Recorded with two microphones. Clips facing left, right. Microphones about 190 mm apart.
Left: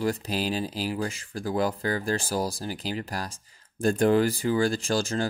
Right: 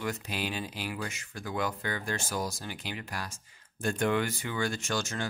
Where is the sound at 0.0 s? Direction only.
35° left (ahead or behind).